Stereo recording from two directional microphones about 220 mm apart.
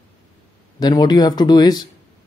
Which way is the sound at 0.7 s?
20° left (ahead or behind).